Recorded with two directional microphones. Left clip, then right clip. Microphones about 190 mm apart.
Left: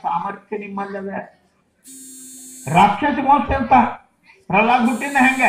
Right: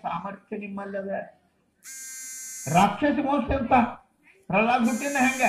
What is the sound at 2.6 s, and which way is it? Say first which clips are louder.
A man's voice: left 7 dB; 45° right (ahead or behind).